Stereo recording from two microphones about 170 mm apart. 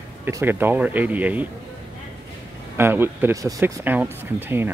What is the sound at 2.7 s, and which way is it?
Speech, 15° right (ahead or behind).